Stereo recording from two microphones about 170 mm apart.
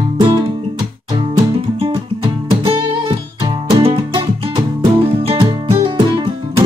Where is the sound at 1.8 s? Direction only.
30° right (ahead or behind).